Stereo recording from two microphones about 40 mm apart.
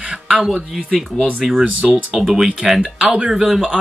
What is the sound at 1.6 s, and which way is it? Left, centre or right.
Speech, right.